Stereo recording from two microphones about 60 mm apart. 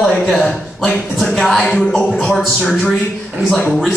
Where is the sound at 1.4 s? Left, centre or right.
Centre.